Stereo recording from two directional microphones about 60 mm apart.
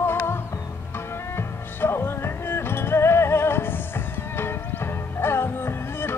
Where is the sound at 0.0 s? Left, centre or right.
Left.